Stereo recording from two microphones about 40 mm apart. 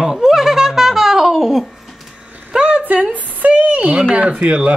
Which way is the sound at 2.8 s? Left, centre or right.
Right.